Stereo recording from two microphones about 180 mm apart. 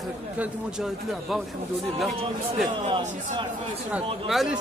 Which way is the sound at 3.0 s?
40° right (ahead or behind).